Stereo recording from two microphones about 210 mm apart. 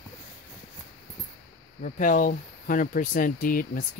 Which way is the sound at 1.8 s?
40° left (ahead or behind).